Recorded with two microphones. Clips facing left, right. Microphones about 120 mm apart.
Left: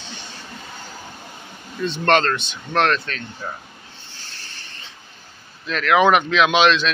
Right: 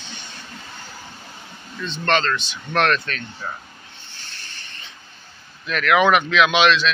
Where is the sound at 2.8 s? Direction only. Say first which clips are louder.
Left 1 dB; 20° left (ahead or behind).